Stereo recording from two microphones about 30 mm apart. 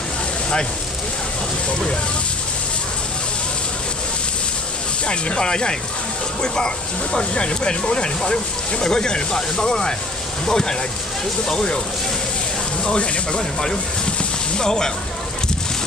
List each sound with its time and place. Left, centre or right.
5.0 s speech: left
12.8 s speech: left